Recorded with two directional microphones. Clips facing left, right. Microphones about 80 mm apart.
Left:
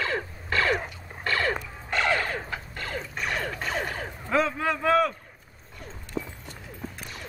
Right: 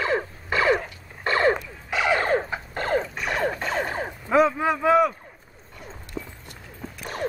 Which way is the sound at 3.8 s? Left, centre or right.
Right.